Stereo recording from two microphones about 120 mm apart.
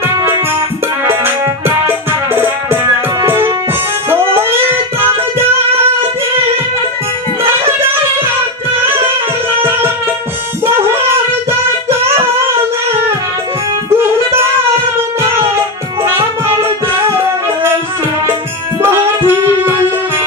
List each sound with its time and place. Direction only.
1.0 s music: 20° right (ahead or behind)
9.6 s music: 20° right (ahead or behind)
18.8 s music: 20° right (ahead or behind)